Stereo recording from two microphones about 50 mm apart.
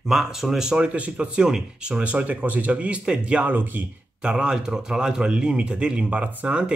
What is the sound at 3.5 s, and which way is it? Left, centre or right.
Speech, right.